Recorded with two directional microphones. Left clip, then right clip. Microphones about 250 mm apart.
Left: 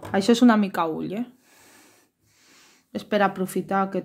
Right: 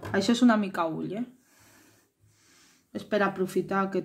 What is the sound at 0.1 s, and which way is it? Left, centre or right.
Speech, left.